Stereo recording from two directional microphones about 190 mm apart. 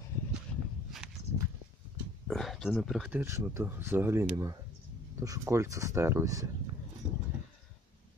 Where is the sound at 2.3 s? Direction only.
Centre (ahead or behind); by 6.5 s 15° right (ahead or behind).